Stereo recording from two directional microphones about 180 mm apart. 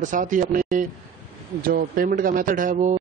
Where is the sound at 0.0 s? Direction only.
45° right (ahead or behind).